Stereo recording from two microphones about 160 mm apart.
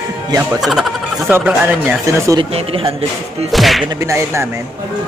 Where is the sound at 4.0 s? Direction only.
15° right (ahead or behind).